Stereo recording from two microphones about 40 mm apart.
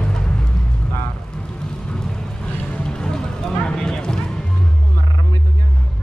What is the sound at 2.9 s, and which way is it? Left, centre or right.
Music, centre.